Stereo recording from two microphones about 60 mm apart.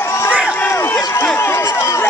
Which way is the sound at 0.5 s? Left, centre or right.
Left.